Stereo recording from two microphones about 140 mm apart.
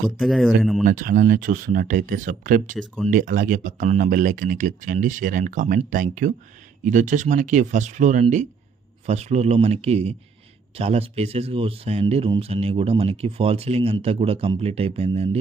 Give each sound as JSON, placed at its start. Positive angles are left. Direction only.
{"t": 0.2, "sound": "speech", "side_deg": 0}
{"t": 0.8, "sound": "speech", "side_deg": -70}